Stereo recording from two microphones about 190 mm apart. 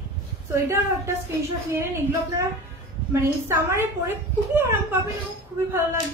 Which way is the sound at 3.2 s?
15° right (ahead or behind).